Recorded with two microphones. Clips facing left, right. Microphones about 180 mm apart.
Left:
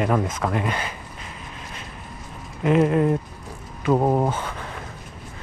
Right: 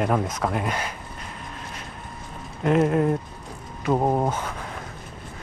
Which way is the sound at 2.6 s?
5° left (ahead or behind).